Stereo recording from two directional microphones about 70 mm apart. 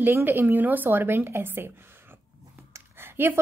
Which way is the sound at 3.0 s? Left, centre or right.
Right.